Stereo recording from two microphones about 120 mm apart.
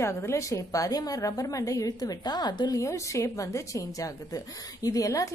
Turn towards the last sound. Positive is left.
turn(degrees=30)  # may be behind; listen again after turning